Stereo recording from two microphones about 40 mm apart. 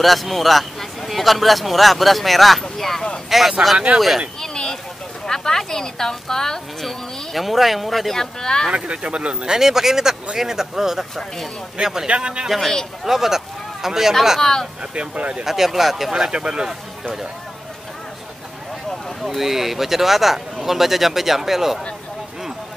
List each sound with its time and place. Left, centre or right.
0.0 s a woman's voice: centre
3.3 s speech: centre
4.4 s a sound: centre
5.2 s a woman's voice: centre
8.2 s a woman's voice: centre
8.7 s speech: right
9.6 s speech: centre
12.1 s speech: right
12.4 s speech: centre
14.4 s a woman's voice: centre
14.8 s speech: right
15.4 s speech: centre; by 16.6 s right
19.2 s speech: centre